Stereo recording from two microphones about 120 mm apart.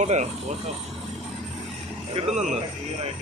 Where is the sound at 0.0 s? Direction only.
85° right.